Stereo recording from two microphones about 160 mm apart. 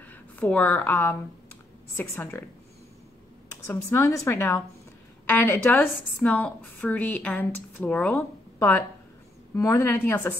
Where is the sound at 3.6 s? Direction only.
20° left (ahead or behind).